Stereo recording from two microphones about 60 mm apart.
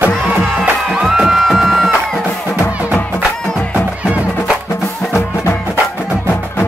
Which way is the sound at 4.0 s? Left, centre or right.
Centre.